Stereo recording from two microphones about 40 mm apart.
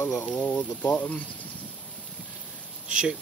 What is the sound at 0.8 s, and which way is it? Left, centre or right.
Speech, left.